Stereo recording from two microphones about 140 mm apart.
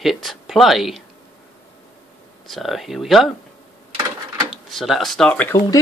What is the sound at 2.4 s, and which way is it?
Speech, centre (ahead or behind).